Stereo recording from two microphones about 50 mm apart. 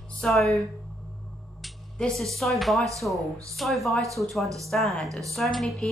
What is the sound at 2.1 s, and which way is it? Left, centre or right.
A woman's voice, centre.